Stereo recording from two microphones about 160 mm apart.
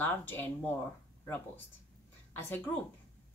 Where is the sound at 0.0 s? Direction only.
10° left (ahead or behind).